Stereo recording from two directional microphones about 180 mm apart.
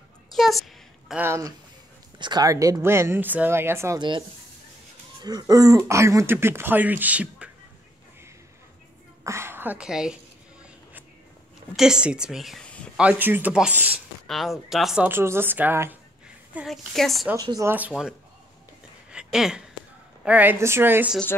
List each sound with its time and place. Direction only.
0.3 s a sound: centre (ahead or behind)
1.2 s speech: 15° right (ahead or behind)
5.2 s speech: 20° right (ahead or behind)
9.2 s a sound: 15° right (ahead or behind)
11.7 s a woman's voice: 5° right (ahead or behind)
12.9 s speech: 5° right (ahead or behind)
16.5 s a woman's voice: centre (ahead or behind)
17.4 s speech: 20° right (ahead or behind)
19.0 s a sound: 5° right (ahead or behind)
20.2 s speech: 10° right (ahead or behind)